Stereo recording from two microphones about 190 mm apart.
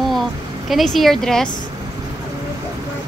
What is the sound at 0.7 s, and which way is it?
Speech, centre (ahead or behind).